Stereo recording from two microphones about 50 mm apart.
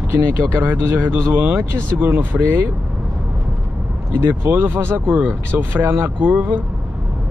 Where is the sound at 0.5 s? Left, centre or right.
Right.